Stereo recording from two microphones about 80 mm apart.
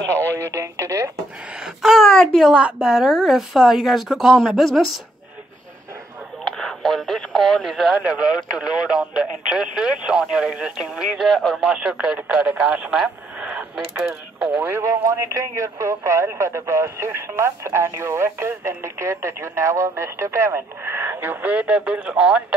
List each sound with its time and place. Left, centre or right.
0.4 s speech: right
1.6 s a woman's voice: centre
6.4 s speech: centre
7.9 s speech: centre
11.7 s speech: centre
14.6 s speech: right; by 22.4 s centre